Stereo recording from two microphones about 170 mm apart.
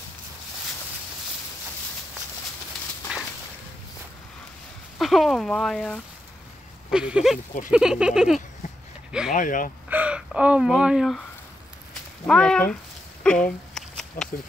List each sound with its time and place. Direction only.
4.9 s speech: centre (ahead or behind)
9.3 s speech: 50° left (ahead or behind)
9.8 s speech: 10° right (ahead or behind)
12.3 s speech: 5° left (ahead or behind)
13.2 s a sound: 5° left (ahead or behind)